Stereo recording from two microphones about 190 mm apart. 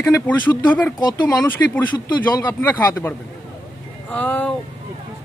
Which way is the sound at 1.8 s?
10° left (ahead or behind).